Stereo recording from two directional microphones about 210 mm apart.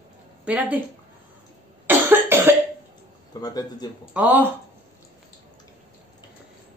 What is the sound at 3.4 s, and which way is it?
Speech, 20° left (ahead or behind).